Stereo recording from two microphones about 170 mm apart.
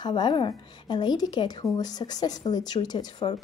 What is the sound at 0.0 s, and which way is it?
A woman's voice, 25° left (ahead or behind).